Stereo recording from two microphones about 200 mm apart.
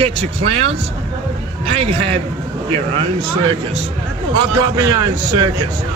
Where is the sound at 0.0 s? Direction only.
30° right (ahead or behind).